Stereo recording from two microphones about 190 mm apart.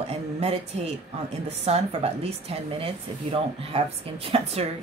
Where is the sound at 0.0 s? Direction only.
30° right (ahead or behind).